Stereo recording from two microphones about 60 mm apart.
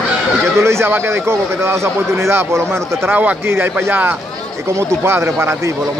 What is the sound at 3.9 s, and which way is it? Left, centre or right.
Speech, right.